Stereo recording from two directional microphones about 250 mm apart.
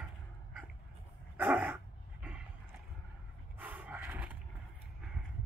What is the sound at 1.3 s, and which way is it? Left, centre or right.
Dog, centre.